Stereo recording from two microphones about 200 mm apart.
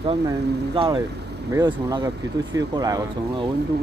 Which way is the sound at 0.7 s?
20° right (ahead or behind).